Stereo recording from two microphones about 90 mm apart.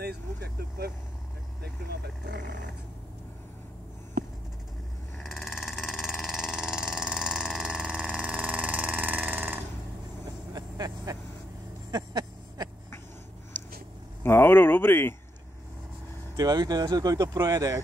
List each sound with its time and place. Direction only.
5.1 s a sound: centre (ahead or behind); by 9.6 s 20° right (ahead or behind)
10.2 s vehicle: 45° right (ahead or behind)
14.2 s speech: 25° left (ahead or behind)
16.3 s speech: 45° right (ahead or behind)